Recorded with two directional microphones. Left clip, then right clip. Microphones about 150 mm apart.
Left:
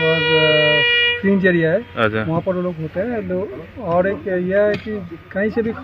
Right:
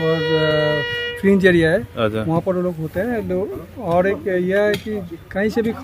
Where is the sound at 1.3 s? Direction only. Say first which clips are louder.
Right 1 dB; 35° right (ahead or behind).